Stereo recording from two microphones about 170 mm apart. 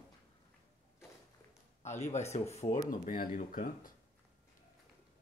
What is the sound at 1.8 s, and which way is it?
Speech, 40° left (ahead or behind).